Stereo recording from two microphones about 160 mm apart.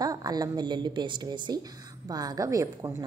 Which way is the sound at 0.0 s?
25° right (ahead or behind).